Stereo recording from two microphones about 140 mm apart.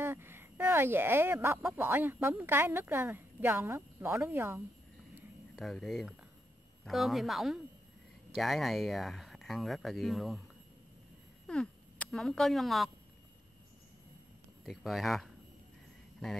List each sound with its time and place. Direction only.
0.0 s speech: 15° right (ahead or behind)
5.6 s speech: centre (ahead or behind)
11.4 s speech: 5° left (ahead or behind)
14.6 s speech: centre (ahead or behind)